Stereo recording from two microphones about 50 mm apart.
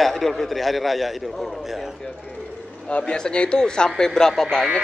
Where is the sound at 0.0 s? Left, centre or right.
Centre.